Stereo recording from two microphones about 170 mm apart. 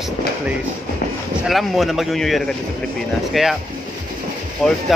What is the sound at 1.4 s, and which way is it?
Speech, centre (ahead or behind).